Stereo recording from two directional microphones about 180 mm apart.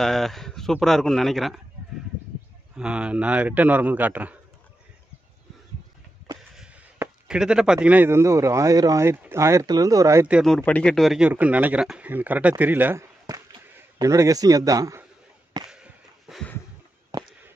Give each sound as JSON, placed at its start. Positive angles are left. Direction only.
{"t": 0.0, "sound": "speech", "side_deg": 0}
{"t": 2.7, "sound": "a man's voice", "side_deg": -5}
{"t": 6.5, "sound": "a man's voice", "side_deg": -5}
{"t": 15.7, "sound": "a sound", "side_deg": -5}